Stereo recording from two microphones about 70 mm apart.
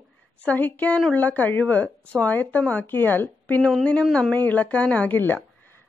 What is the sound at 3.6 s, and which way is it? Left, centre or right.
Speech, centre.